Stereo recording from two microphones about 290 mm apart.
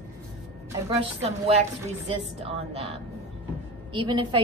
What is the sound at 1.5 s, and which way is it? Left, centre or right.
A woman's voice, right.